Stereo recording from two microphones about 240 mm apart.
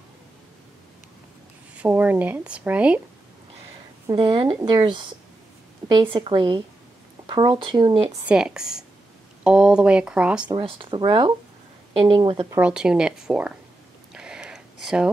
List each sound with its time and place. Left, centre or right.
1.8 s speech: centre
4.1 s speech: right
8.3 s speech: centre
10.5 s speech: right
12.5 s speech: centre
14.1 s a sound: centre